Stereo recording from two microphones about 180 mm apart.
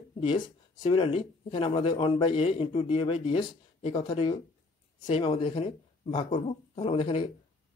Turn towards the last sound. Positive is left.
turn(degrees=30)  # may be behind; listen again after turning